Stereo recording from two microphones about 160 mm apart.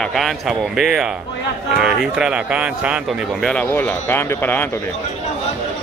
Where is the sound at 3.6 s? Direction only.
15° left (ahead or behind).